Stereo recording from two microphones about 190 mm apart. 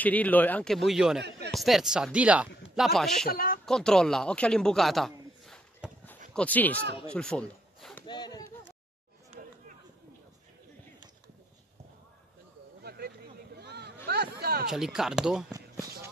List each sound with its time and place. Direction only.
0.0 s a man's voice: 10° left (ahead or behind)
3.3 s speech: 50° left (ahead or behind)
3.6 s a man's voice: 5° left (ahead or behind)
7.1 s a sound: 5° left (ahead or behind)
8.1 s speech: 20° left (ahead or behind)
12.8 s a sound: 55° right (ahead or behind)
14.7 s speech: centre (ahead or behind)